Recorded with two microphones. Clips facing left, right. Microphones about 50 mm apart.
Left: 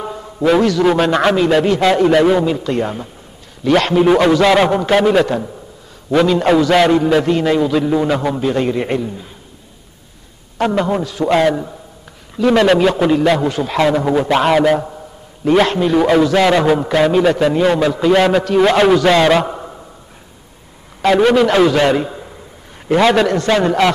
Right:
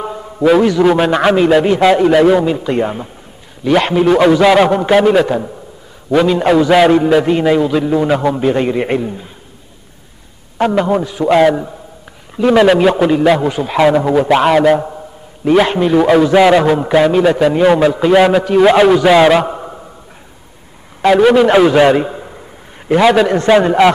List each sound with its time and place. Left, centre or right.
0.0 s a sound: centre
0.8 s a man's voice: centre
8.4 s a man's voice: centre
10.6 s a man's voice: centre
21.0 s a man's voice: centre
23.3 s a man's voice: right
23.6 s a man's voice: centre